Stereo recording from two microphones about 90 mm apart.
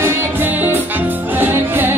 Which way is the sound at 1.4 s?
25° right (ahead or behind).